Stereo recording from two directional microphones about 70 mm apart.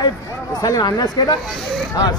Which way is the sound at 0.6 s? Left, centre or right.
Left.